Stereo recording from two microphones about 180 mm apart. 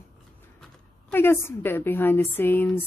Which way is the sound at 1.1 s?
10° left (ahead or behind).